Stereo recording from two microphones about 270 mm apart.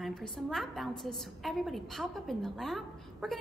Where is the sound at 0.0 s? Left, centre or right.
Centre.